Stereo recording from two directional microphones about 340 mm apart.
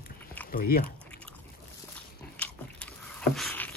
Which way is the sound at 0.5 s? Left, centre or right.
Left.